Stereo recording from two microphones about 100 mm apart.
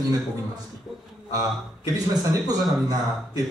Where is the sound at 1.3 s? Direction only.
35° right (ahead or behind).